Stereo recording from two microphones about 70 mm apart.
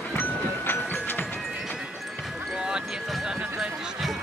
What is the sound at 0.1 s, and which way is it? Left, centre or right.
Music, left.